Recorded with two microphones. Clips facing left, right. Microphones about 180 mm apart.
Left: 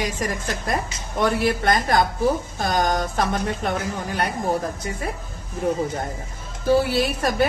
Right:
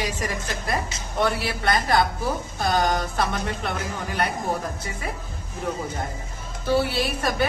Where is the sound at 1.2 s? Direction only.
45° left (ahead or behind).